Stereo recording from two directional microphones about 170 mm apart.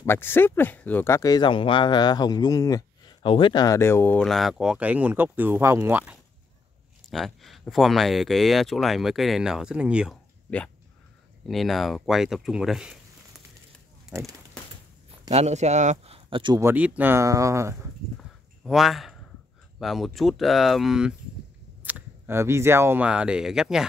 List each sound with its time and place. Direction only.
0.0 s speech: 15° left (ahead or behind)
4.2 s speech: centre (ahead or behind)
7.1 s speech: centre (ahead or behind)
10.5 s speech: 10° left (ahead or behind)
14.1 s speech: centre (ahead or behind)
15.3 s speech: 40° right (ahead or behind)
16.5 s speech: 10° right (ahead or behind)
18.6 s speech: centre (ahead or behind)